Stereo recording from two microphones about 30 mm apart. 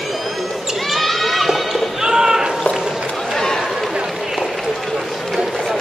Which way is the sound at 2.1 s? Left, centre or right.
Right.